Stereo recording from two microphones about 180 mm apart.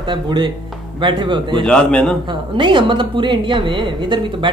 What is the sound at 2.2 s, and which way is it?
A man's voice, 25° right (ahead or behind).